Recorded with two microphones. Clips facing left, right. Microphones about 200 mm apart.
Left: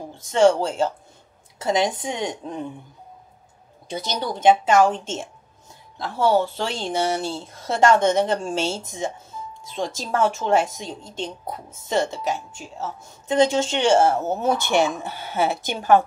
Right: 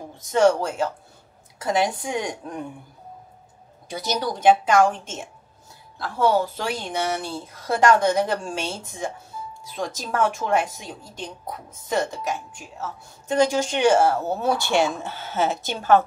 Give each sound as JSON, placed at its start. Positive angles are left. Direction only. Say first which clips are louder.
{"t": 0.1, "sound": "speech", "louder": "left 1 dB", "side_deg": 25}
{"t": 4.2, "sound": "speech", "louder": "left 1 dB", "side_deg": 25}